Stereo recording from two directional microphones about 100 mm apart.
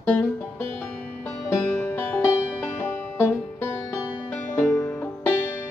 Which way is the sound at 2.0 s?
20° left (ahead or behind).